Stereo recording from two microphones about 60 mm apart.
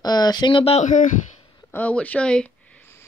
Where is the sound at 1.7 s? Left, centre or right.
Left.